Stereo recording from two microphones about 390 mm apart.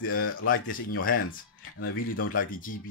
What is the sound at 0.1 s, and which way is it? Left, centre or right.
Speech, left.